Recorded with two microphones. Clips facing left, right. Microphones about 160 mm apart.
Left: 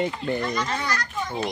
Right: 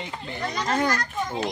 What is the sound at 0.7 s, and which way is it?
Speech, 45° right (ahead or behind).